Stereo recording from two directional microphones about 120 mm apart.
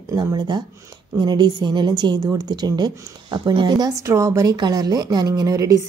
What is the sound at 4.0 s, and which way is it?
Speech, 25° right (ahead or behind).